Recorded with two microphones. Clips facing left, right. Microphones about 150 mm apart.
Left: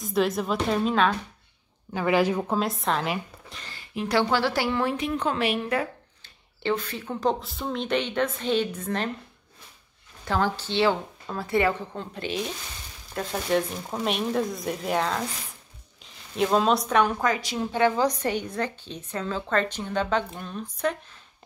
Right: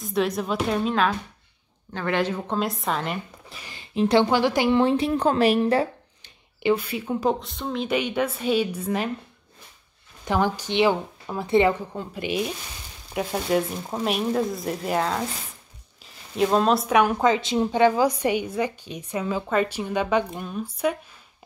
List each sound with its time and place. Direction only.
0.0 s speech: centre (ahead or behind)
3.9 s a woman's voice: 25° right (ahead or behind)
6.2 s speech: 10° right (ahead or behind)
7.3 s a woman's voice: 5° left (ahead or behind)
10.2 s a woman's voice: 15° right (ahead or behind)
11.9 s a woman's voice: 10° right (ahead or behind)
17.2 s a woman's voice: 25° right (ahead or behind)